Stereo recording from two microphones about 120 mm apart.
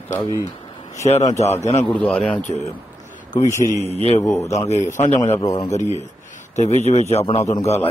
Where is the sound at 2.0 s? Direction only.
10° left (ahead or behind).